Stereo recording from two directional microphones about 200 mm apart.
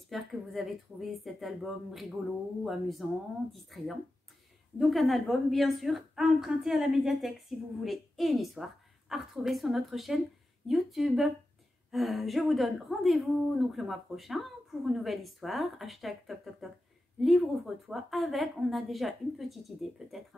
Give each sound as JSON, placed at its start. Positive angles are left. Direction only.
{"t": 0.1, "sound": "a woman's voice", "side_deg": 0}